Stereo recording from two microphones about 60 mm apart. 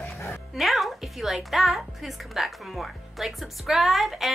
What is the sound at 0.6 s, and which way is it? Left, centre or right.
A woman's voice, centre.